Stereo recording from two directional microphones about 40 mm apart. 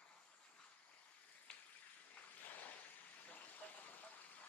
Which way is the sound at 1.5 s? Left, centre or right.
Left.